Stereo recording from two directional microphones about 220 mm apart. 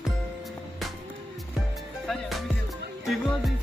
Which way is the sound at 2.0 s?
Centre (ahead or behind).